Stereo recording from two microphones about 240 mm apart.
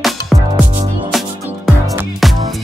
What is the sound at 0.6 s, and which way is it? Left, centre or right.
Music, right.